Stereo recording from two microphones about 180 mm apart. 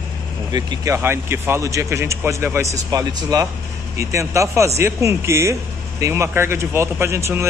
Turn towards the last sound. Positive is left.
turn(degrees=-15)  # may be behind; listen again after turning